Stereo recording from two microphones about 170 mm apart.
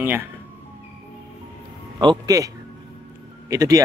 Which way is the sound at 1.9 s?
25° right (ahead or behind).